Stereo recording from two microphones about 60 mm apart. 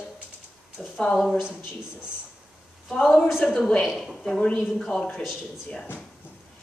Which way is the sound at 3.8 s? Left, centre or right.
Centre.